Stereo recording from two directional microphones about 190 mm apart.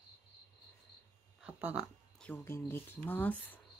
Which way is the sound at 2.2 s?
10° left (ahead or behind).